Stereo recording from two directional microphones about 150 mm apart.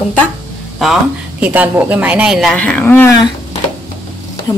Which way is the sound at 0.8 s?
5° right (ahead or behind).